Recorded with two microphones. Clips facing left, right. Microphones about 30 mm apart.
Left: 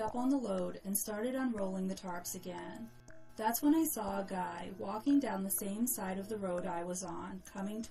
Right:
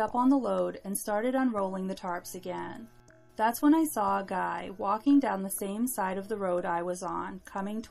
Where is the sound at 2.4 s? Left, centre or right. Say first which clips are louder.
Right 7 dB; right.